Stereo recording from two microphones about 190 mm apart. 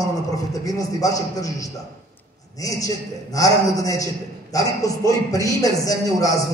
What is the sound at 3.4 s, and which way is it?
A man's voice, 20° left (ahead or behind).